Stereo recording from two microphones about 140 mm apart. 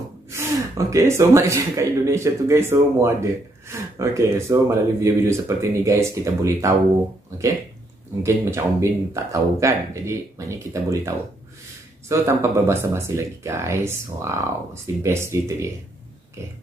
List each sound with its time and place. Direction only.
0.3 s speech: 20° right (ahead or behind)
8.2 s speech: 20° right (ahead or behind)
12.1 s speech: 20° right (ahead or behind)